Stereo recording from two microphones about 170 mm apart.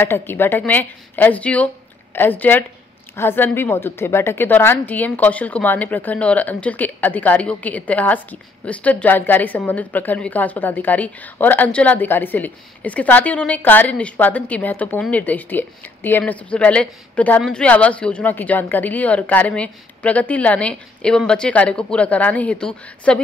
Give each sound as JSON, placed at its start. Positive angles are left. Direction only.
{"t": 0.0, "sound": "a woman's voice", "side_deg": 15}